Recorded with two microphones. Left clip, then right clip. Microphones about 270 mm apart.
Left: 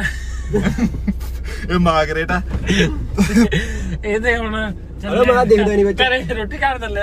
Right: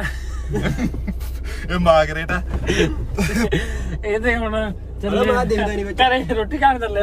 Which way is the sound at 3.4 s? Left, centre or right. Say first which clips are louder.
Left 1 dB; right.